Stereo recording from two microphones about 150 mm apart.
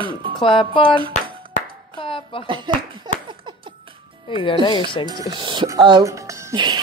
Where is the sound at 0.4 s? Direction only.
35° left (ahead or behind).